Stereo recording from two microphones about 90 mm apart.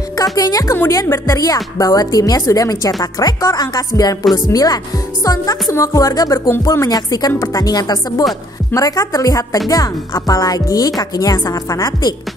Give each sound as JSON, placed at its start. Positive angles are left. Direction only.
{"t": 0.2, "sound": "a woman's voice", "side_deg": 45}